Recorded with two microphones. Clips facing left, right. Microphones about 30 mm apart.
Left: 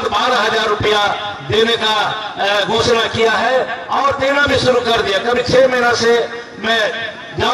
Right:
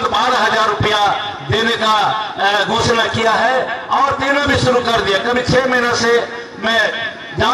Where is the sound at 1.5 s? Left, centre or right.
Centre.